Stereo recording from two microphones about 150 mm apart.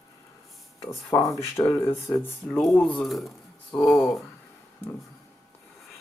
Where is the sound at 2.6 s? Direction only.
5° left (ahead or behind).